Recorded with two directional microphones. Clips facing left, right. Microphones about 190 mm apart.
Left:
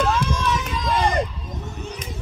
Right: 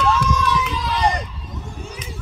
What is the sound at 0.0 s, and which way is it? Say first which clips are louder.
Run: right 2 dB; 50° left (ahead or behind).